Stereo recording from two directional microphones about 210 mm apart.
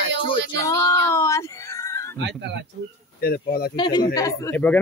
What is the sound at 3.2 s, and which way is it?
Speech, 45° left (ahead or behind).